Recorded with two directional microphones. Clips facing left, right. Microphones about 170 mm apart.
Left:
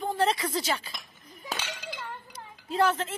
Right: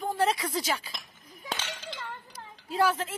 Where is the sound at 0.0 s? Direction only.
5° right (ahead or behind).